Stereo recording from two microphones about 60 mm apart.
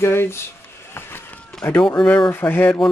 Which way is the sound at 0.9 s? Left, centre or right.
Left.